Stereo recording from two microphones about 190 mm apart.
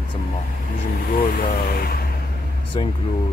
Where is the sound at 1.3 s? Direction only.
50° left (ahead or behind).